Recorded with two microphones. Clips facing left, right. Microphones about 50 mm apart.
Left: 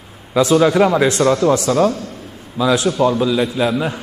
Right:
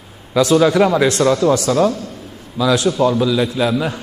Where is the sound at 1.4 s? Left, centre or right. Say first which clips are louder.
Even; left.